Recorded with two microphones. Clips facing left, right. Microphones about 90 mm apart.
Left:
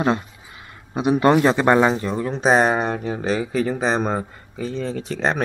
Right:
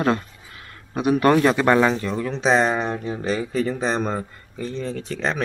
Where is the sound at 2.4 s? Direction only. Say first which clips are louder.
Left 2 dB; 45° left (ahead or behind).